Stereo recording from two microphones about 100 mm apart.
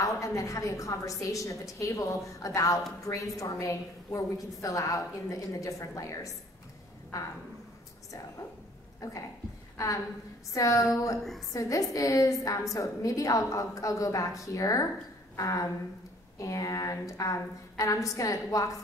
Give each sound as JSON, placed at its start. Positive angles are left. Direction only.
{"t": 0.0, "sound": "a woman's voice", "side_deg": 30}
{"t": 9.0, "sound": "a woman's voice", "side_deg": 35}
{"t": 10.5, "sound": "a woman's voice", "side_deg": 35}